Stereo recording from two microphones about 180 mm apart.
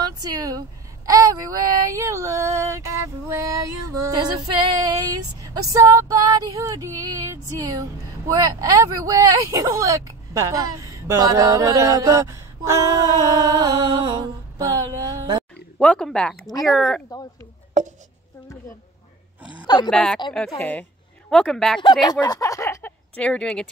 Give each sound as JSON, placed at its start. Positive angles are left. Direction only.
{"t": 0.0, "sound": "speech", "side_deg": -20}
{"t": 15.8, "sound": "speech", "side_deg": 5}
{"t": 17.8, "sound": "a sound", "side_deg": -40}
{"t": 19.6, "sound": "speech", "side_deg": 25}
{"t": 19.9, "sound": "speech", "side_deg": 5}
{"t": 22.2, "sound": "speech", "side_deg": 20}